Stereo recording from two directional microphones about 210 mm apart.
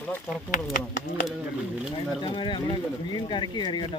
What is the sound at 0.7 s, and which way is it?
Speech, 40° left (ahead or behind).